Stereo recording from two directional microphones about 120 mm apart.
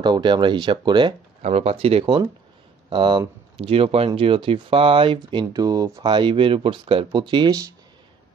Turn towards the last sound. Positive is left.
turn(degrees=-30)  # may be behind; listen again after turning